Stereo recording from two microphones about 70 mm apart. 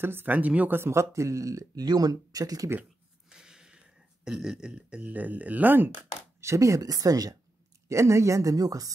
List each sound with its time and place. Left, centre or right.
0.0 s speech: right
0.7 s speech: right
3.3 s a sound: centre; by 5.9 s right
6.4 s speech: right
7.9 s speech: right